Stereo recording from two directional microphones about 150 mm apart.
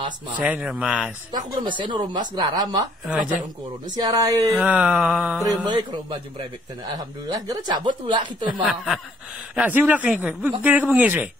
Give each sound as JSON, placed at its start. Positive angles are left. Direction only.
{"t": 0.4, "sound": "speech", "side_deg": -5}
{"t": 1.3, "sound": "speech", "side_deg": -30}
{"t": 4.0, "sound": "speech", "side_deg": -25}
{"t": 4.6, "sound": "speech", "side_deg": -5}
{"t": 5.7, "sound": "speech", "side_deg": -30}
{"t": 8.6, "sound": "speech", "side_deg": 0}
{"t": 9.6, "sound": "speech", "side_deg": -10}